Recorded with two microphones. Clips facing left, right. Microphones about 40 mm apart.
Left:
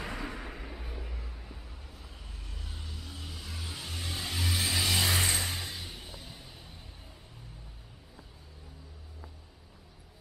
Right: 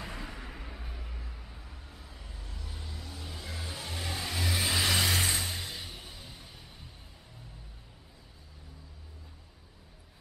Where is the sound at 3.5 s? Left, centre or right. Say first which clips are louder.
Right 2 dB; right.